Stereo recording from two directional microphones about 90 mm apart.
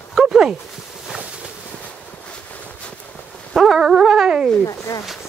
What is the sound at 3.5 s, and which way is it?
Dog, centre (ahead or behind).